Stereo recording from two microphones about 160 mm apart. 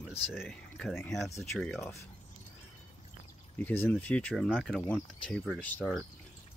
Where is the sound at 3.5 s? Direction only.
10° left (ahead or behind).